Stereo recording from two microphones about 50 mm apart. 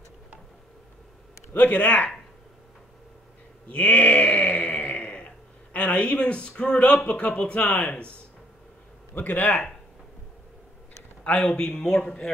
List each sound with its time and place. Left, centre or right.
1.5 s a man's voice: left
3.7 s a sound: left
5.7 s a man's voice: left
9.1 s speech: left
11.3 s a man's voice: centre